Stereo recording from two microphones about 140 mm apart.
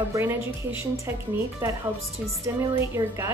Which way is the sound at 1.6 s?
20° right (ahead or behind).